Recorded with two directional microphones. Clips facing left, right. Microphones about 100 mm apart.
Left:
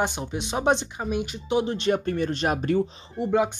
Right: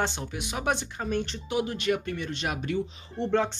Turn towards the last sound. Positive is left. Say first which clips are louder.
# left 3 dB
turn(degrees=10)  # may be behind; listen again after turning